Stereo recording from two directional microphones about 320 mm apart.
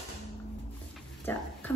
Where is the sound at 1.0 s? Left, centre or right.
Centre.